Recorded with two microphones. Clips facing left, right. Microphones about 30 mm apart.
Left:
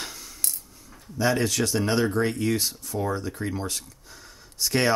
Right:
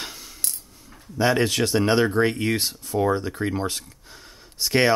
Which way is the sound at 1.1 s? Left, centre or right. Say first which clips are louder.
Right 3 dB; right.